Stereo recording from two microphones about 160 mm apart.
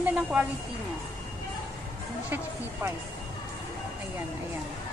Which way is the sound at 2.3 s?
15° right (ahead or behind).